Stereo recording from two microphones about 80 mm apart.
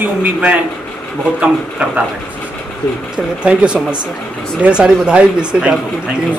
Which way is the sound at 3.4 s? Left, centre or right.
Centre.